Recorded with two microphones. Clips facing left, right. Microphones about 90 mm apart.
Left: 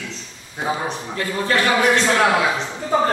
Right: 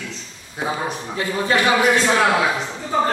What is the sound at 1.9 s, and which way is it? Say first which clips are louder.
Speech: even; 5° right (ahead or behind).